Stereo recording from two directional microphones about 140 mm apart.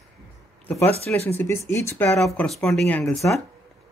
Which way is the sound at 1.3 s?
15° left (ahead or behind).